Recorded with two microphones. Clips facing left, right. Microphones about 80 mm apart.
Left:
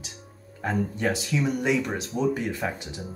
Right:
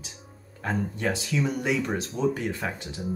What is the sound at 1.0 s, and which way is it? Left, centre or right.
Speech, centre.